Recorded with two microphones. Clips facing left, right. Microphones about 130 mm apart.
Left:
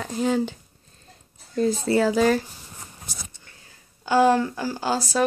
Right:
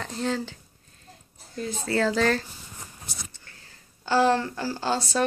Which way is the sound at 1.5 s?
40° left (ahead or behind).